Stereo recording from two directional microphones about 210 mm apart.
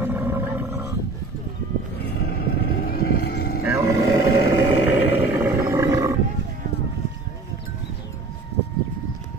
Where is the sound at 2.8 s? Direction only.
45° left (ahead or behind).